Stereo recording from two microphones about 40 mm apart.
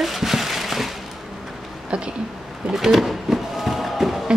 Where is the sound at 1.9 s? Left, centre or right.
Right.